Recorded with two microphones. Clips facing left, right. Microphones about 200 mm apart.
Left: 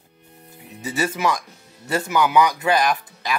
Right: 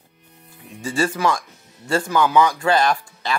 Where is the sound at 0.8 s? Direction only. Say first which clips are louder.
Right 2 dB; 20° left (ahead or behind).